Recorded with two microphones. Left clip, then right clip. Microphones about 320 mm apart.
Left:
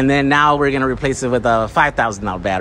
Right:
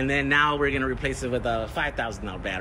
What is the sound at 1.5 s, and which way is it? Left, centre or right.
Speech, left.